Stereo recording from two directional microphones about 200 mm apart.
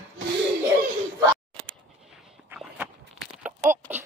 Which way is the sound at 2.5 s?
5° right (ahead or behind).